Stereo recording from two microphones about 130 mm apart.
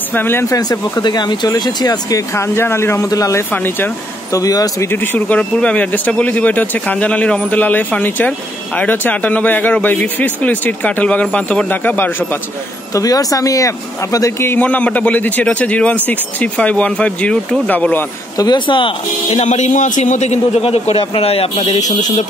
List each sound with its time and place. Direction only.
0.1 s speech: 15° left (ahead or behind)
4.4 s speech: 30° left (ahead or behind)
4.9 s speech: 15° left (ahead or behind)
12.9 s speech: 30° left (ahead or behind); by 18.0 s 10° left (ahead or behind)
18.4 s speech: 35° left (ahead or behind)
19.3 s a man's voice: 65° left (ahead or behind)